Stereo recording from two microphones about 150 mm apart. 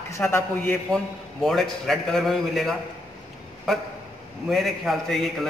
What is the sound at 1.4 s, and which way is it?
A man's voice, centre (ahead or behind).